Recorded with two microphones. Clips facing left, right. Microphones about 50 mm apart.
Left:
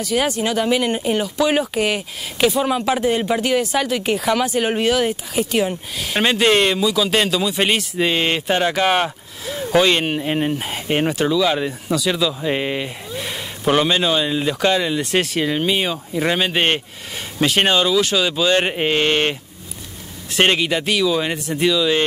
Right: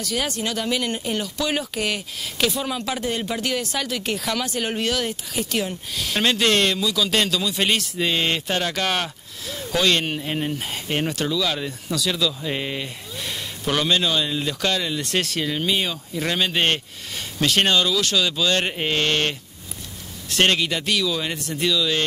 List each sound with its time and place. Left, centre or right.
0.0 s speech: centre